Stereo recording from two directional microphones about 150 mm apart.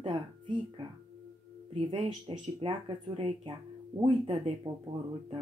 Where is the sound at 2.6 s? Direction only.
35° right (ahead or behind).